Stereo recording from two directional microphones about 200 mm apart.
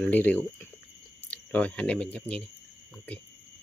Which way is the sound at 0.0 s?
10° left (ahead or behind).